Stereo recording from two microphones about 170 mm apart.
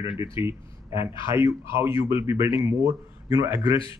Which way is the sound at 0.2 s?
15° right (ahead or behind).